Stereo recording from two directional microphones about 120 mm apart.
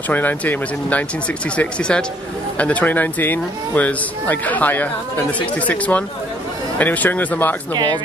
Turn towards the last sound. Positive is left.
turn(degrees=-35)  # may be behind; listen again after turning